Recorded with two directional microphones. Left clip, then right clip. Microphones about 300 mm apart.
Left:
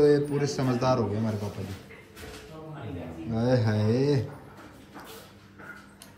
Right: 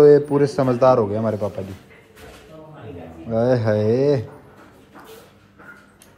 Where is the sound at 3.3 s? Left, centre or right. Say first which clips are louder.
Right 9 dB; centre.